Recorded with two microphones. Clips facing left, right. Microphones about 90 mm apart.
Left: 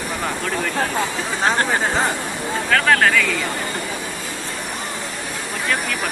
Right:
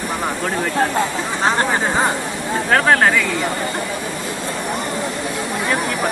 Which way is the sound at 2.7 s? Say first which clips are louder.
Right 2 dB; 30° right (ahead or behind).